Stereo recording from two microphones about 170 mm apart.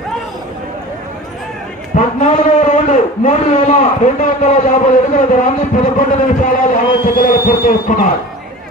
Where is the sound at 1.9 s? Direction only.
45° left (ahead or behind).